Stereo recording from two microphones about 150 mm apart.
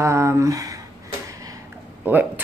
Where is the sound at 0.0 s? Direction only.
20° right (ahead or behind).